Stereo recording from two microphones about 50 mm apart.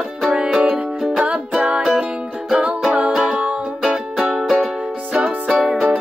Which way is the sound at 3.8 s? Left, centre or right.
Centre.